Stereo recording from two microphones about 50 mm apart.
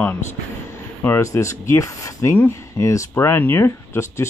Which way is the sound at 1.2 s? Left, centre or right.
Left.